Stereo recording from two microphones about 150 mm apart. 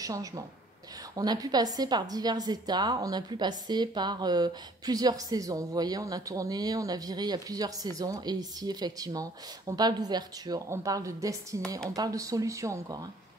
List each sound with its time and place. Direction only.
0.0 s a woman's voice: 25° right (ahead or behind)